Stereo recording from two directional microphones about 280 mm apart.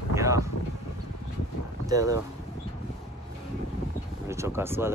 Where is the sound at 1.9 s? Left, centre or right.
Centre.